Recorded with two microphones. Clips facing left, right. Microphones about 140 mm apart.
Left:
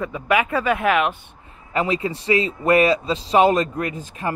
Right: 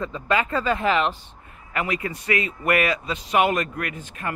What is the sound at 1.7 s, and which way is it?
Speech, 30° left (ahead or behind).